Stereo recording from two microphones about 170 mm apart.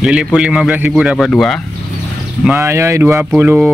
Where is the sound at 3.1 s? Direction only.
5° right (ahead or behind).